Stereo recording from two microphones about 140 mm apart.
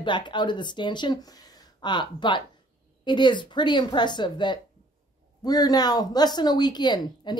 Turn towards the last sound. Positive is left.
turn(degrees=30)  # may be behind; listen again after turning